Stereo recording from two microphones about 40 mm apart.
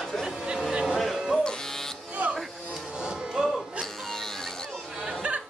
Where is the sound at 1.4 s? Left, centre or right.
Centre.